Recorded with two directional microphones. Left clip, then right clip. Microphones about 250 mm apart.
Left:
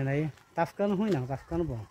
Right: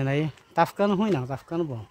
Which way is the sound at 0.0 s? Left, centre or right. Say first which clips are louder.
Right 5 dB; centre.